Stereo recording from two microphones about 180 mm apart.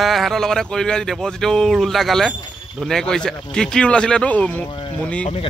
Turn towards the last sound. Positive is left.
turn(degrees=5)  # may be behind; listen again after turning